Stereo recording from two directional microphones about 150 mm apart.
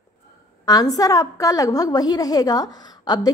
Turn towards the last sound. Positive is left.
turn(degrees=25)  # may be behind; listen again after turning